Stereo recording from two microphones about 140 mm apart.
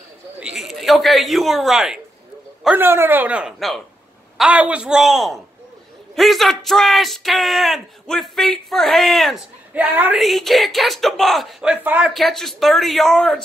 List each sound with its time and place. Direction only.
0.4 s a man's voice: 5° right (ahead or behind)
9.8 s a man's voice: 10° right (ahead or behind)
10.1 s speech: centre (ahead or behind)
12.1 s speech: centre (ahead or behind)